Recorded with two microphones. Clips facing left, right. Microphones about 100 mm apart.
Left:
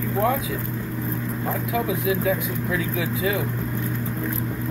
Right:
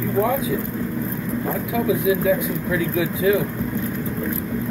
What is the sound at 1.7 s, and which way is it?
Speech, centre (ahead or behind).